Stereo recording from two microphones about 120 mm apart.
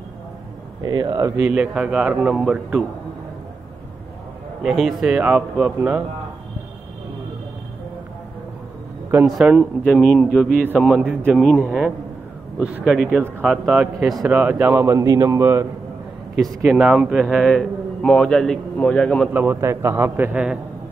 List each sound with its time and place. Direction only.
0.8 s speech: 35° right (ahead or behind)
1.4 s a man's voice: 10° right (ahead or behind)
4.6 s a man's voice: centre (ahead or behind)
9.2 s a man's voice: 5° right (ahead or behind)
9.9 s a man's voice: 5° left (ahead or behind)
10.7 s a man's voice: 10° right (ahead or behind); by 15.7 s 25° right (ahead or behind)
16.6 s a man's voice: 5° right (ahead or behind)
19.3 s a man's voice: 20° right (ahead or behind)